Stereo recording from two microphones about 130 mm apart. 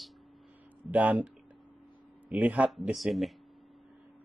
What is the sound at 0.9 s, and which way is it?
Speech, 10° right (ahead or behind).